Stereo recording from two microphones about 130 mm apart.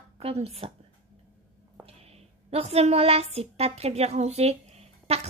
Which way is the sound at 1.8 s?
50° right (ahead or behind).